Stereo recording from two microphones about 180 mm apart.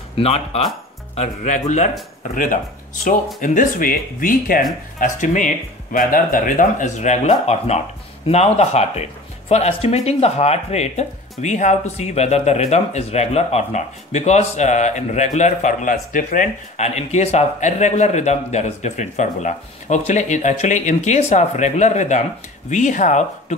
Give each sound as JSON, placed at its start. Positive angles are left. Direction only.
{"t": 0.2, "sound": "speech", "side_deg": 35}